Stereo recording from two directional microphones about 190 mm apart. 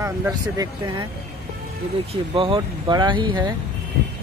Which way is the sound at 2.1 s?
30° right (ahead or behind).